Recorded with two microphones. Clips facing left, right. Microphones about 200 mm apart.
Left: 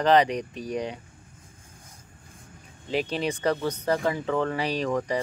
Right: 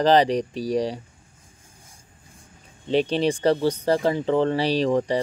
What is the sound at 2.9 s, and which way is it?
Speech, 30° right (ahead or behind).